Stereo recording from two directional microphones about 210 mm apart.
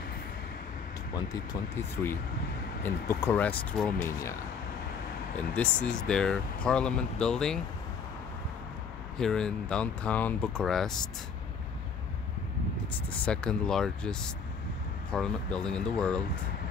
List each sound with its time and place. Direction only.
1.1 s speech: 20° left (ahead or behind)
2.8 s speech: 10° left (ahead or behind)
5.5 s speech: 5° left (ahead or behind)
9.2 s speech: 5° left (ahead or behind)
13.2 s speech: 5° left (ahead or behind)